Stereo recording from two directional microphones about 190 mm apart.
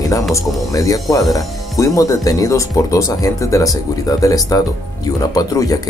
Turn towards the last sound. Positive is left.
turn(degrees=20)  # may be behind; listen again after turning